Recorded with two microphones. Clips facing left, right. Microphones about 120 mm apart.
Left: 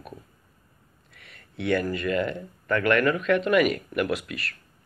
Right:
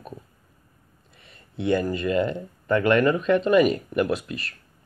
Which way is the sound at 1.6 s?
20° right (ahead or behind).